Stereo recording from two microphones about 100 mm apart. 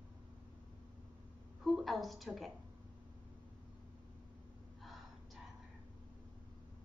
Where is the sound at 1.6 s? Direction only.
Centre (ahead or behind).